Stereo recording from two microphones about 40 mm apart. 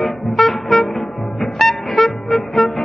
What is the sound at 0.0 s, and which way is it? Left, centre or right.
Music, centre.